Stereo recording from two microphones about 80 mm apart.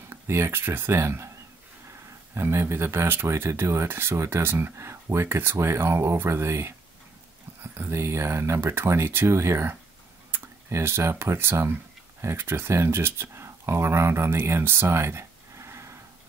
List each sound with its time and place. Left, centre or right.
0.1 s speech: right
2.3 s speech: right